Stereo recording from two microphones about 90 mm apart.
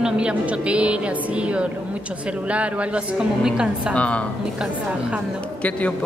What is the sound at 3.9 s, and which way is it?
Speech, 15° left (ahead or behind).